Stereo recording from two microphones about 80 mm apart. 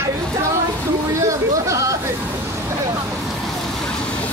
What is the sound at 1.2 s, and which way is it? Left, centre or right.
Speech, right.